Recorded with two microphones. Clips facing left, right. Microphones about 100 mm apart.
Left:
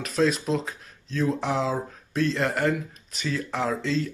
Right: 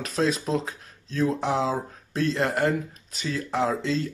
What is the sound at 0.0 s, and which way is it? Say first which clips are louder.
Speech: left 1 dB; 35° right (ahead or behind).